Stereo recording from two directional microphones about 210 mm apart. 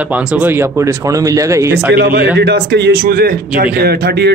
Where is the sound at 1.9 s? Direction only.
50° right (ahead or behind).